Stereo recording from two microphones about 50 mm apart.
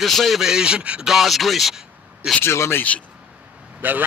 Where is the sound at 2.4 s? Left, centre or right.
Left.